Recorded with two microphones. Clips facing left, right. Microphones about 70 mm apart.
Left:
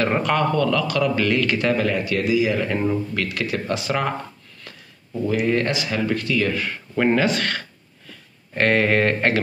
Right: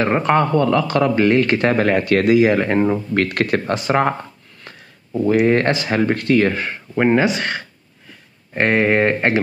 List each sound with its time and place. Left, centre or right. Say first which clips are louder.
0.0 s a man's voice: right 4 dB; right
5.2 s a man's voice: right 6 dB; right
7.0 s speech: right 3 dB; centre